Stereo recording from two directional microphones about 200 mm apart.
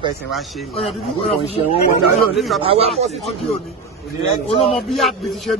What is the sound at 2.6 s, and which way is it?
Speech, 30° right (ahead or behind).